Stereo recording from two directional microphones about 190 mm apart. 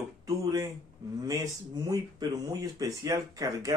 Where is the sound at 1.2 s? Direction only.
20° right (ahead or behind).